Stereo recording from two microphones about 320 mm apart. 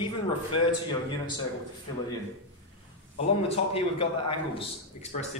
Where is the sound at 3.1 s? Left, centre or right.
Centre.